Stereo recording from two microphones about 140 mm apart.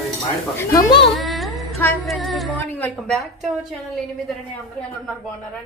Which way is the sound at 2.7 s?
10° left (ahead or behind).